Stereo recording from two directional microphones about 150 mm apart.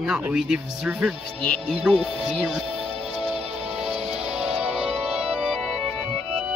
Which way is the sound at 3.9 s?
45° right (ahead or behind).